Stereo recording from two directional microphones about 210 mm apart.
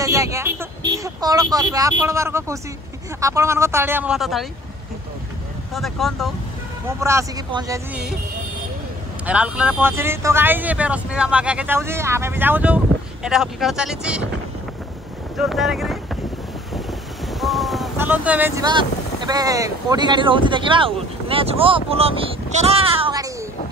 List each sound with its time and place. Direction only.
0.0 s speech: 15° right (ahead or behind)
5.8 s speech: centre (ahead or behind)
6.9 s speech: 15° right (ahead or behind)
9.2 s speech: 5° right (ahead or behind)
15.3 s boat: centre (ahead or behind)
17.3 s a sound: centre (ahead or behind)
17.9 s speech: 10° right (ahead or behind)
18.6 s speech: 20° right (ahead or behind)